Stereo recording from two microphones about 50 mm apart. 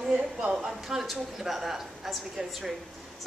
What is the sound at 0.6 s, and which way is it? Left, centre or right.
A woman's voice, centre.